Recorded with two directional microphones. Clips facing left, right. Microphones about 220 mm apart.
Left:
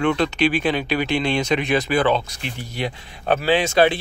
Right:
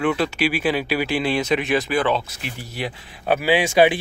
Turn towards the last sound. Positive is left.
turn(degrees=-15)  # may be behind; listen again after turning